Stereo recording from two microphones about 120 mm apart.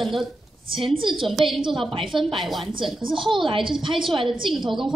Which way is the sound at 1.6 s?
45° right (ahead or behind).